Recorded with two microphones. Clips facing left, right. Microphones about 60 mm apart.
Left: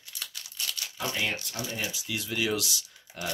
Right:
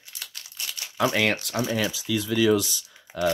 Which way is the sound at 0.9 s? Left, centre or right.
Right.